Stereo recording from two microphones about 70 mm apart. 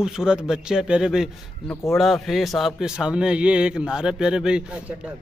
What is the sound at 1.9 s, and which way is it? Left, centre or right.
A man's voice, centre.